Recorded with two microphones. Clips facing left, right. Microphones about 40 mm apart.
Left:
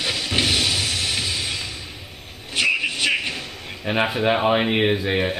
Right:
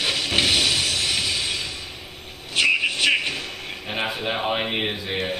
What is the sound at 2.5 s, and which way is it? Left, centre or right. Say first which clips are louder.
Music: right 1 dB; centre.